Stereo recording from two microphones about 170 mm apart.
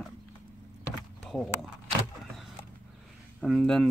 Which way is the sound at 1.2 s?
Centre (ahead or behind).